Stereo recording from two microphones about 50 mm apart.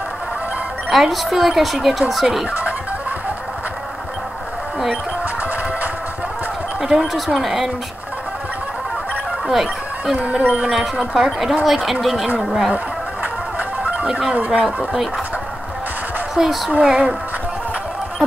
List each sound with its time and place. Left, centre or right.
0.8 s speech: centre
5.2 s music: right
6.8 s speech: centre
9.5 s speech: centre
10.1 s speech: right
10.7 s speech: centre
12.7 s music: right
14.3 s speech: right
16.3 s speech: centre